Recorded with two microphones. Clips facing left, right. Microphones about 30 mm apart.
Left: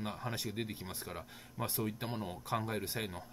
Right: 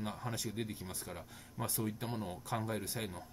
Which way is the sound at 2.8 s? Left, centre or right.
Left.